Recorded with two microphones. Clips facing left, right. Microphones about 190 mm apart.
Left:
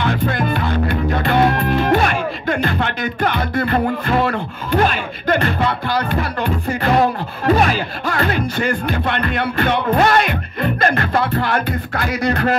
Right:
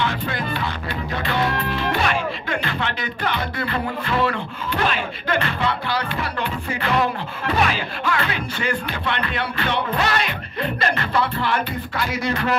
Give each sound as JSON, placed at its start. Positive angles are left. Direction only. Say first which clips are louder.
{"t": 0.0, "sound": "music", "louder": "left 6 dB", "side_deg": 50}